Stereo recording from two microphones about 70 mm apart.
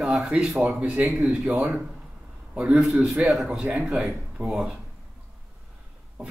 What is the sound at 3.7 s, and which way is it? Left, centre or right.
Speech, right.